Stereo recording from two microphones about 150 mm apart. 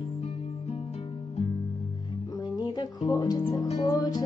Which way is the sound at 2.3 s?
30° left (ahead or behind).